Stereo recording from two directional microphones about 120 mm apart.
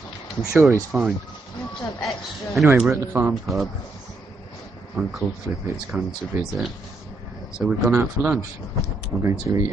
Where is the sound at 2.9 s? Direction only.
15° right (ahead or behind).